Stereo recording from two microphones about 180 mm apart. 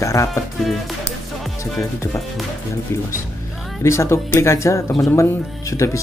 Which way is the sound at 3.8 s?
15° left (ahead or behind).